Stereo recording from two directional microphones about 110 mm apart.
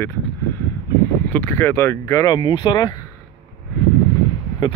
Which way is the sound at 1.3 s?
20° left (ahead or behind).